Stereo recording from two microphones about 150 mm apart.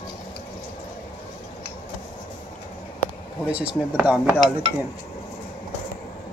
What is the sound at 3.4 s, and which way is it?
Speech, 10° right (ahead or behind).